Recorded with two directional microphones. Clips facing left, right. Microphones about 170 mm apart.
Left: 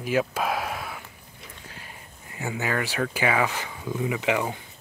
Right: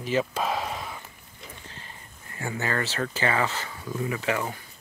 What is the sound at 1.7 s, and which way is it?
Speech, 10° left (ahead or behind).